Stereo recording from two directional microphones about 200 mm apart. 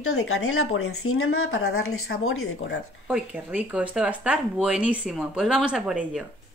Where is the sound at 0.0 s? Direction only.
90° left.